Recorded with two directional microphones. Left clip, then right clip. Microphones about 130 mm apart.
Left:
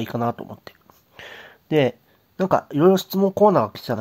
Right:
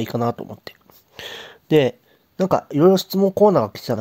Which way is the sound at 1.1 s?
45° right (ahead or behind).